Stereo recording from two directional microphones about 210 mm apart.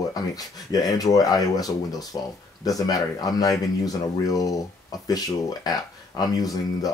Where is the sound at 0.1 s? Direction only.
20° left (ahead or behind).